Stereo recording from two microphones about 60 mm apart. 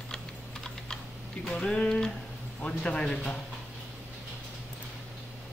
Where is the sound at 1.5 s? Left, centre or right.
Centre.